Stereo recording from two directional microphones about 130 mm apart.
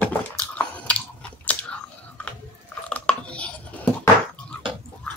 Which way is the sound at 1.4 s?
10° left (ahead or behind).